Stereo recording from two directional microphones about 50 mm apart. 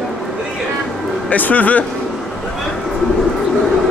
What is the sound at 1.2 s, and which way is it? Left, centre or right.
Speech, left.